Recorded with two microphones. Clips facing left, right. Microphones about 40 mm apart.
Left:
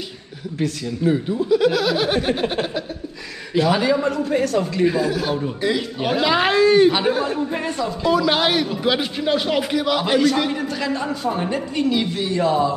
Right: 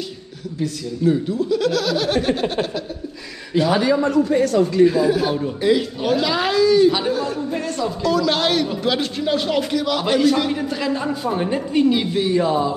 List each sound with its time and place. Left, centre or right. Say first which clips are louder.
1.0 s speech: right 1 dB; centre
3.8 s a man's voice: right 2 dB; left
5.0 s speech: right 3 dB; centre
5.9 s speech: left 1 dB; left; by 11.4 s centre
11.5 s a woman's voice: right 3 dB; centre